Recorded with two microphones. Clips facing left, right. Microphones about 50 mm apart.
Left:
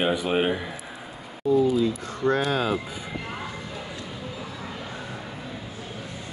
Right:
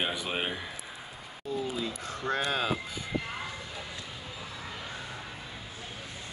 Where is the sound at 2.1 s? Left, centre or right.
Centre.